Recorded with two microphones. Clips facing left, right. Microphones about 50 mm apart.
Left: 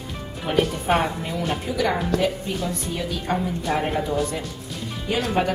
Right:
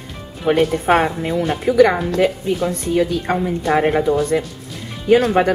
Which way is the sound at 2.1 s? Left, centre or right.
Right.